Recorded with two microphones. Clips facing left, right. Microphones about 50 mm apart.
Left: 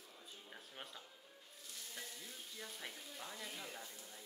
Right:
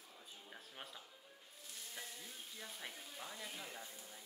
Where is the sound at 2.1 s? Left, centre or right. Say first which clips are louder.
Even; centre.